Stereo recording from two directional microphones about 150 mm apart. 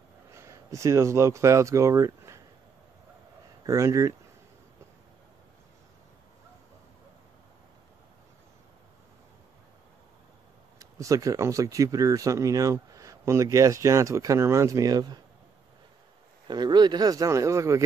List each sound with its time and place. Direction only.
0.3 s speech: 20° right (ahead or behind)
3.6 s speech: 20° right (ahead or behind)
10.8 s speech: 20° right (ahead or behind)
16.4 s speech: 30° right (ahead or behind)